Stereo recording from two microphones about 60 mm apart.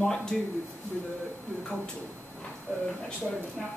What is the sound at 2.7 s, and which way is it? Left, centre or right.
Speech, centre.